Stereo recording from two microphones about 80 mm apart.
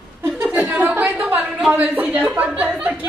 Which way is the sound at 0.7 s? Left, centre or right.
Right.